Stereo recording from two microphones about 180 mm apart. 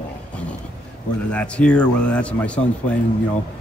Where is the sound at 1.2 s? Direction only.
5° left (ahead or behind).